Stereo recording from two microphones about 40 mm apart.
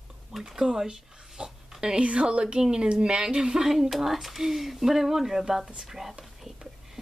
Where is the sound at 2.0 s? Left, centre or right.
Right.